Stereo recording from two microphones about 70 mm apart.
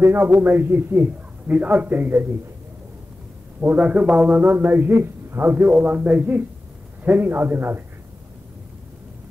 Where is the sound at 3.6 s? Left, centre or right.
Right.